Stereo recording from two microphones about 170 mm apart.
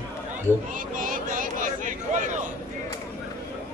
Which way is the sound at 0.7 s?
50° right (ahead or behind).